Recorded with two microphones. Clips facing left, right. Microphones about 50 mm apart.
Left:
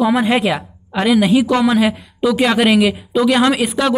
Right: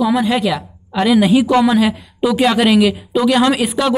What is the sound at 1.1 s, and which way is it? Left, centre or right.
Speech, centre.